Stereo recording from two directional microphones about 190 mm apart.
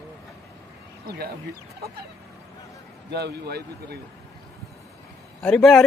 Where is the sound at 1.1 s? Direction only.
55° right (ahead or behind).